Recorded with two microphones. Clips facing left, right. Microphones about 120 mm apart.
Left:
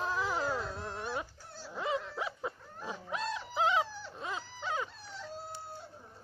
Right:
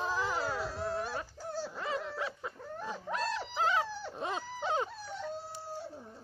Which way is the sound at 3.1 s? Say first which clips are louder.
Right 3 dB; 90° right.